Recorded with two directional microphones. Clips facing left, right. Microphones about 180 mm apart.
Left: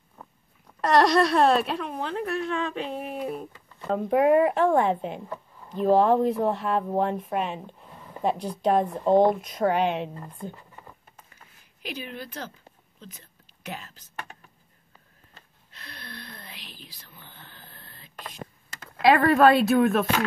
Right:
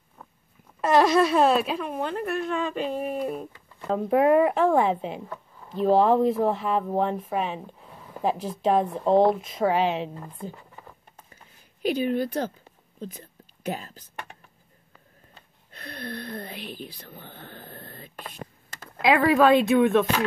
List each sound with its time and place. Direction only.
0.7 s speech: 5° right (ahead or behind)
11.8 s speech: 45° right (ahead or behind)
13.0 s whispering: 45° right (ahead or behind)
15.7 s a sound: 50° right (ahead or behind)
18.9 s speech: centre (ahead or behind)